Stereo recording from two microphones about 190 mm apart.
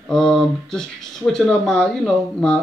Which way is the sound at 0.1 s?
5° left (ahead or behind).